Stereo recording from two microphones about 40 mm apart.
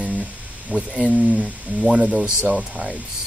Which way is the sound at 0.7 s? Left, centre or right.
Right.